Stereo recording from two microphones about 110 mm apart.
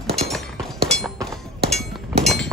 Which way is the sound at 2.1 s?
65° right (ahead or behind).